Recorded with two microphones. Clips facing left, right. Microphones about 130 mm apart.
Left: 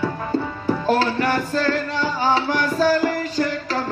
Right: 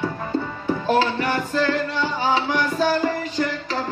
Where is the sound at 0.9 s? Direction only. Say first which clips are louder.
Left 1 dB; 40° left (ahead or behind).